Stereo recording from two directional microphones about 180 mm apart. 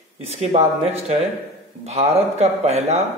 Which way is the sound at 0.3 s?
35° right (ahead or behind).